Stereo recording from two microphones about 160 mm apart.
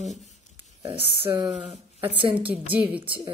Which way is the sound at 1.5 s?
40° right (ahead or behind).